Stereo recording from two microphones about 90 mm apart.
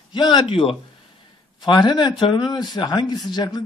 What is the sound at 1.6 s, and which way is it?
Speech, 55° left (ahead or behind).